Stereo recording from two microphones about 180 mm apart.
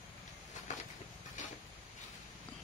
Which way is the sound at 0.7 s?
45° left (ahead or behind).